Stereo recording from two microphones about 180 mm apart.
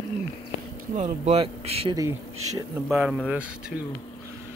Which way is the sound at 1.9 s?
20° right (ahead or behind).